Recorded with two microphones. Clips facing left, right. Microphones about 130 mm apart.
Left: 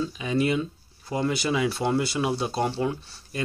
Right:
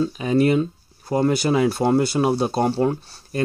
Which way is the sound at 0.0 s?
45° right (ahead or behind).